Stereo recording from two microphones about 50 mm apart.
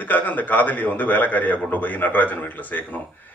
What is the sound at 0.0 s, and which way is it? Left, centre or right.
A man's voice, left.